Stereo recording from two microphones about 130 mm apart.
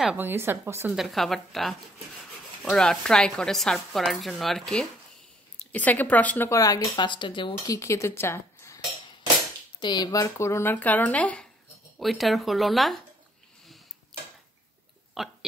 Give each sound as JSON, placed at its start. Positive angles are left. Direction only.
{"t": 0.0, "sound": "a woman's voice", "side_deg": -10}
{"t": 0.9, "sound": "speech", "side_deg": 0}
{"t": 6.6, "sound": "speech", "side_deg": 30}
{"t": 9.8, "sound": "speech", "side_deg": 35}
{"t": 15.2, "sound": "speech", "side_deg": 0}